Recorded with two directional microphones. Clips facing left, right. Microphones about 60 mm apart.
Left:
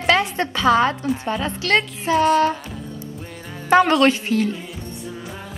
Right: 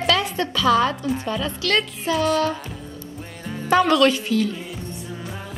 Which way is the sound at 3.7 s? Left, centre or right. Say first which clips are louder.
Left 2 dB; left.